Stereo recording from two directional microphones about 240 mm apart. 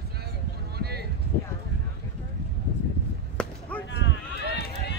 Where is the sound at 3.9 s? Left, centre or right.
Left.